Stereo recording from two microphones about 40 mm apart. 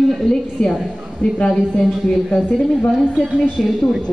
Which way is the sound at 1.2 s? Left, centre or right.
Left.